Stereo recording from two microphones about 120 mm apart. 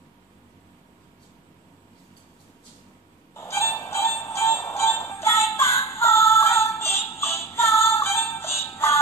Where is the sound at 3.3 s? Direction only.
25° left (ahead or behind).